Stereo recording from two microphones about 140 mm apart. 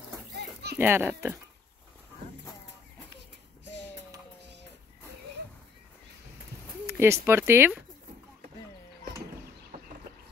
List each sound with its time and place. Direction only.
0.7 s a child's voice: 15° right (ahead or behind)
6.9 s speech: 20° right (ahead or behind)